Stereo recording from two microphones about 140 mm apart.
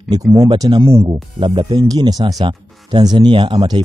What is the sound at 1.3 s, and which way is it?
Speech, 35° right (ahead or behind).